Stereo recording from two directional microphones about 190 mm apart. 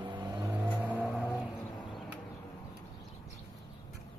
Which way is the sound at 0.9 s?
Centre (ahead or behind).